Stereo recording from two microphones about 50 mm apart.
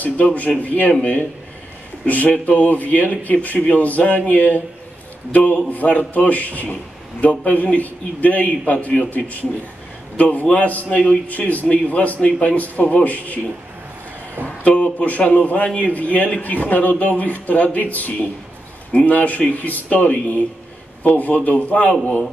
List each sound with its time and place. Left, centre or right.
0.0 s a man's voice: left
2.0 s a man's voice: left
10.1 s a man's voice: left
14.4 s a sound: left
15.0 s a man's voice: left